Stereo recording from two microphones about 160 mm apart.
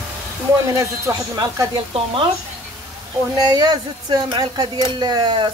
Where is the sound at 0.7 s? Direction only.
20° right (ahead or behind).